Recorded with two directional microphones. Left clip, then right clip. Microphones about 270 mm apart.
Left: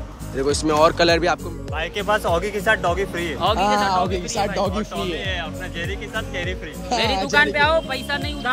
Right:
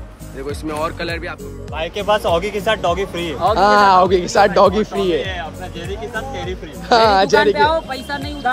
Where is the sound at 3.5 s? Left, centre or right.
Centre.